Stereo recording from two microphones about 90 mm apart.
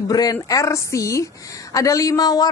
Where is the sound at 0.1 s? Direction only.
45° left (ahead or behind).